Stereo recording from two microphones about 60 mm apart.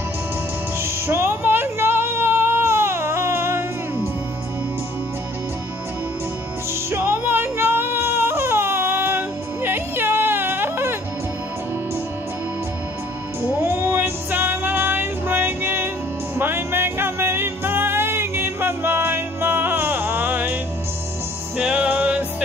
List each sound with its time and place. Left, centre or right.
1.0 s baby cry: right
6.7 s music: right
13.6 s music: right
21.5 s music: right